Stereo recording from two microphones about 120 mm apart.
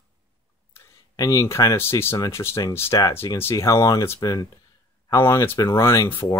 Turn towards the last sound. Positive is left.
turn(degrees=20)  # may be behind; listen again after turning